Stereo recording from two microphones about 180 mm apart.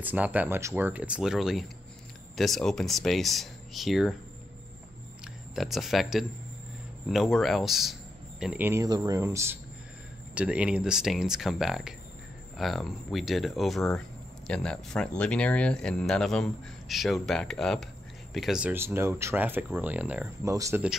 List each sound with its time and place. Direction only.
0.0 s speech: 10° right (ahead or behind)
5.2 s speech: centre (ahead or behind); by 20.8 s 20° right (ahead or behind)